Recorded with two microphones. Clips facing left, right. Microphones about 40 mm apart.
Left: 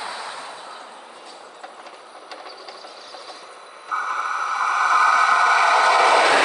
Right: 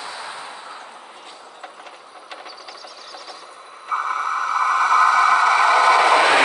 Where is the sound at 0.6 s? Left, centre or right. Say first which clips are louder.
Right 1 dB; right.